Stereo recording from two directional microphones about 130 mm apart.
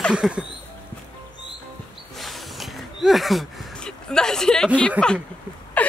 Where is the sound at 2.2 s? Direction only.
Centre (ahead or behind).